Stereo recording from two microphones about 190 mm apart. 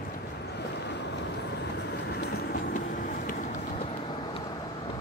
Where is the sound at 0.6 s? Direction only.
65° left (ahead or behind); by 4.6 s 25° left (ahead or behind).